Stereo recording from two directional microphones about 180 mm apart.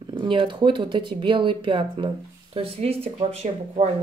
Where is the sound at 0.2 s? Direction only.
25° right (ahead or behind).